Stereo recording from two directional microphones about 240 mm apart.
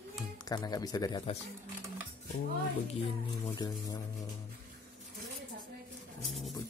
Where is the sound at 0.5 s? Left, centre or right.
Centre.